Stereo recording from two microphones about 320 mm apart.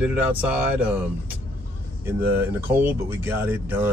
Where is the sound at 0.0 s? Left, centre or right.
Centre.